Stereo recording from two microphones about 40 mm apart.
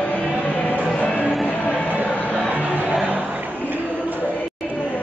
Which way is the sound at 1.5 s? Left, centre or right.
Left.